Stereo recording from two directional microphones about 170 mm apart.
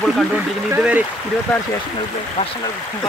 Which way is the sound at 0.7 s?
10° right (ahead or behind).